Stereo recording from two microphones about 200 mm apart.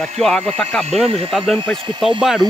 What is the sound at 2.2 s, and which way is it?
Speech, centre (ahead or behind).